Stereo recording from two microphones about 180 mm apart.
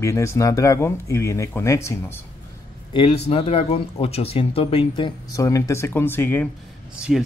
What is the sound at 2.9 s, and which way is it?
Speech, 35° left (ahead or behind).